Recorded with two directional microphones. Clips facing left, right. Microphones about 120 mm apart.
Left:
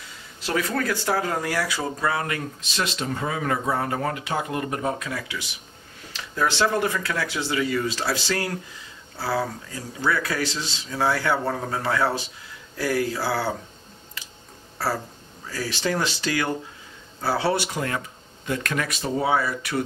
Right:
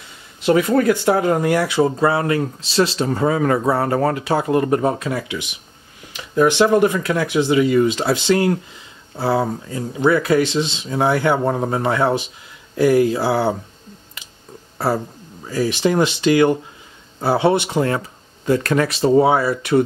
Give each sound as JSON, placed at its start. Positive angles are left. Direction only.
{"t": 0.4, "sound": "speech", "side_deg": -20}
{"t": 14.8, "sound": "speech", "side_deg": -20}